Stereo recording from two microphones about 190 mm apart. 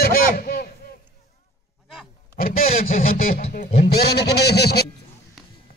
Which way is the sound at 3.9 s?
60° left (ahead or behind).